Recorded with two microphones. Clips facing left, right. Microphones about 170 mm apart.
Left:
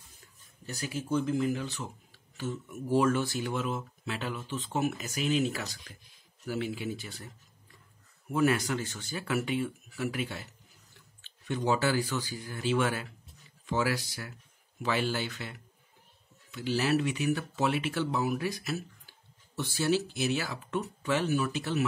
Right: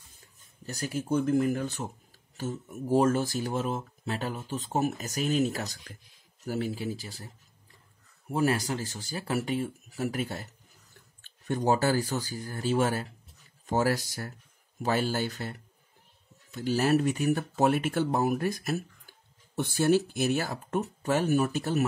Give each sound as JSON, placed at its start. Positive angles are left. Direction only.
{"t": 0.7, "sound": "speech", "side_deg": -45}
{"t": 16.5, "sound": "speech", "side_deg": -45}